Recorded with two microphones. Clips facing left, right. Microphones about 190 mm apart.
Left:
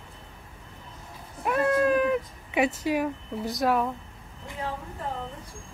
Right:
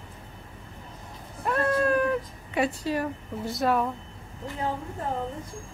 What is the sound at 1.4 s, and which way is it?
Cat, 10° left (ahead or behind).